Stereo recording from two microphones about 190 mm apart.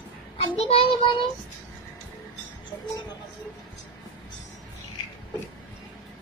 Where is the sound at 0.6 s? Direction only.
30° left (ahead or behind).